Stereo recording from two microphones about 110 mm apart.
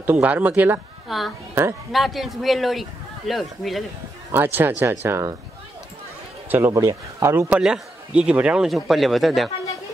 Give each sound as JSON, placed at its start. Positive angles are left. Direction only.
{"t": 0.0, "sound": "speech", "side_deg": -15}
{"t": 1.0, "sound": "a woman's voice", "side_deg": 0}
{"t": 1.5, "sound": "a woman's voice", "side_deg": -25}
{"t": 1.9, "sound": "a man's voice", "side_deg": 0}
{"t": 4.3, "sound": "speech", "side_deg": -20}
{"t": 6.5, "sound": "speech", "side_deg": -25}
{"t": 7.5, "sound": "a man's voice", "side_deg": -10}